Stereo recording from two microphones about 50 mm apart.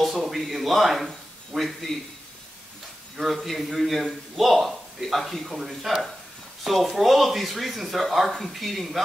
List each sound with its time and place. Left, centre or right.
0.0 s a sound: centre
1.5 s speech: centre
3.2 s speech: centre